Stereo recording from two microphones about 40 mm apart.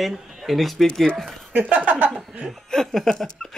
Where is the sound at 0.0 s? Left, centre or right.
Centre.